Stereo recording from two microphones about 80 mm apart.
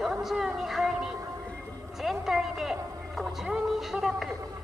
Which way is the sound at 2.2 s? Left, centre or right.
Centre.